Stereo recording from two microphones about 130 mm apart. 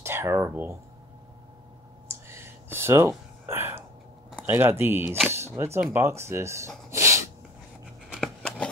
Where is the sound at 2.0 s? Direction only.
20° right (ahead or behind).